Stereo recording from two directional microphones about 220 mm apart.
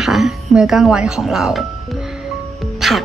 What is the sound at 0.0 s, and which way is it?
Speech, centre (ahead or behind).